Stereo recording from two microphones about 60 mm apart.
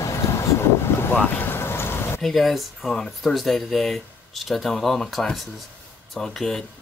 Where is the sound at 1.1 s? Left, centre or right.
Left.